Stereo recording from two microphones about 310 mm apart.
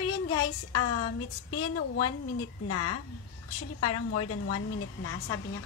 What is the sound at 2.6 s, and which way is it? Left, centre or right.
A woman's voice, left.